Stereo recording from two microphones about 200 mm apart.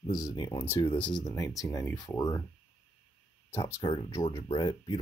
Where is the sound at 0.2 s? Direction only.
20° left (ahead or behind).